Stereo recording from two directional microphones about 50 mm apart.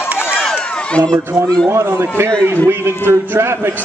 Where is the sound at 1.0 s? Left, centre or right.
Right.